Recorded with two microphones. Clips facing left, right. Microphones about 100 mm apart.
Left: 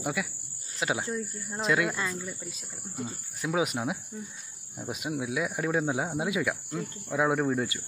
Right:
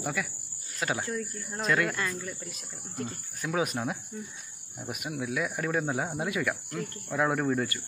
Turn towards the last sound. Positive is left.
turn(degrees=10)  # may be behind; listen again after turning